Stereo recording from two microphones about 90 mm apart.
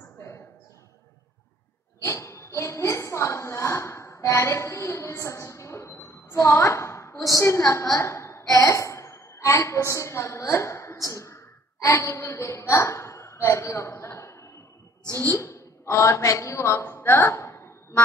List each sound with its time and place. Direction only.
2.0 s a woman's voice: 35° left (ahead or behind)